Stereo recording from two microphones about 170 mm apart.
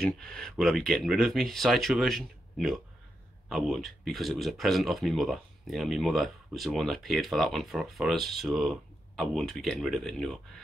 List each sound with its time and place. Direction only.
0.0 s speech: 5° left (ahead or behind)